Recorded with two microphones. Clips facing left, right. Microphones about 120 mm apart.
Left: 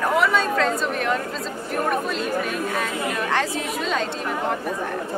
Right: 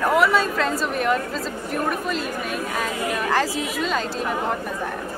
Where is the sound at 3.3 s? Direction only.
Centre (ahead or behind).